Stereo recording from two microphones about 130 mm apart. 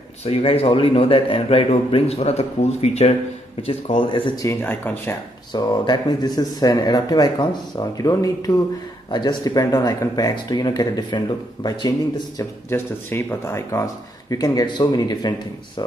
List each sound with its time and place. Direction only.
0.2 s a man's voice: 50° left (ahead or behind)
4.4 s speech: 20° left (ahead or behind)
5.5 s speech: 35° left (ahead or behind)
12.4 s speech: 20° left (ahead or behind)